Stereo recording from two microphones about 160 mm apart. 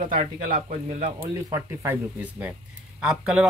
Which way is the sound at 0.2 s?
45° right (ahead or behind).